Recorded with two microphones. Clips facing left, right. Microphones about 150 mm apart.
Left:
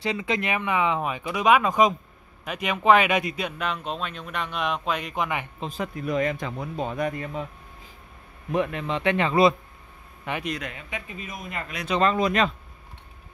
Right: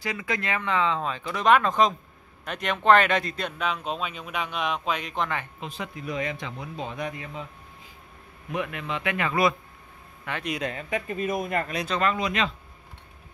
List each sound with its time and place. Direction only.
0.0 s speech: 25° left (ahead or behind)
5.6 s speech: 45° left (ahead or behind)
8.5 s a man's voice: 35° left (ahead or behind)
10.8 s speech: 45° right (ahead or behind)
12.2 s speech: 45° left (ahead or behind)